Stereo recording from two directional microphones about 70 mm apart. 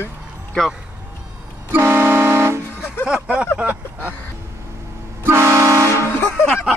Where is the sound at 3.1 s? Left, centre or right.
Centre.